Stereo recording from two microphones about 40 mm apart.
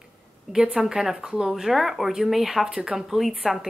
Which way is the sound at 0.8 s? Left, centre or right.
Centre.